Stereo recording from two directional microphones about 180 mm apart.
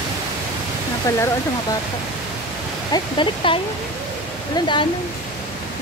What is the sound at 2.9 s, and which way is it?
Speech, 25° left (ahead or behind).